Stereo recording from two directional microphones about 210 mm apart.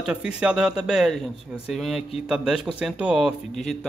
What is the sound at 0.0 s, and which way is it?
Speech, 5° right (ahead or behind).